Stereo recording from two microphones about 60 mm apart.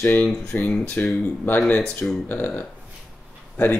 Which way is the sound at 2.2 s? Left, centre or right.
Left.